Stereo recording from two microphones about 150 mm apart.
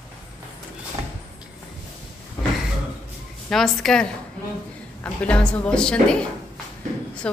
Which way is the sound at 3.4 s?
Centre (ahead or behind).